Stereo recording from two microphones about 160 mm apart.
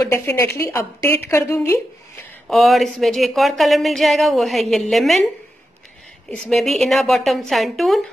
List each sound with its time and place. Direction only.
0.0 s a woman's voice: 20° left (ahead or behind)
2.4 s speech: centre (ahead or behind)
6.4 s speech: centre (ahead or behind)